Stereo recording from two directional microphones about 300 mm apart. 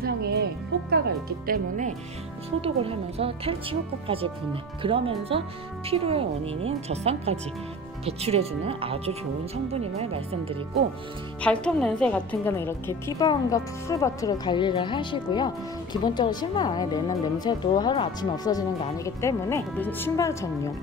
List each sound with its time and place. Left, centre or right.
0.0 s speech: right
4.8 s speech: centre
11.4 s a woman's voice: centre